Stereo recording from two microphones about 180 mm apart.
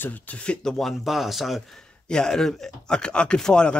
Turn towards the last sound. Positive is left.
turn(degrees=5)  # may be behind; listen again after turning